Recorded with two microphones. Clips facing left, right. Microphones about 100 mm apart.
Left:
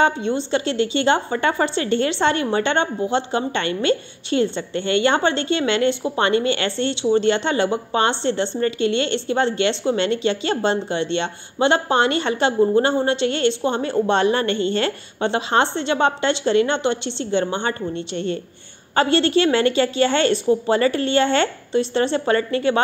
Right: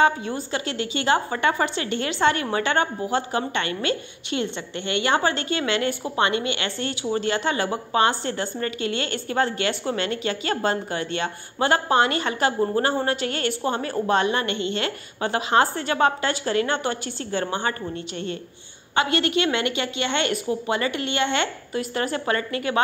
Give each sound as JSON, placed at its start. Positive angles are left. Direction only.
{"t": 0.0, "sound": "a woman's voice", "side_deg": 25}